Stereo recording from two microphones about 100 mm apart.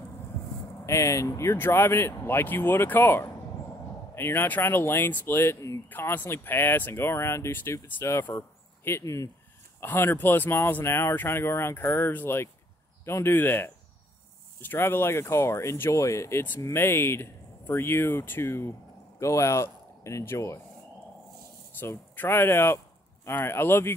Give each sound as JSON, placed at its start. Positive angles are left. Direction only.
{"t": 0.8, "sound": "a man's voice", "side_deg": 30}
{"t": 21.7, "sound": "speech", "side_deg": 20}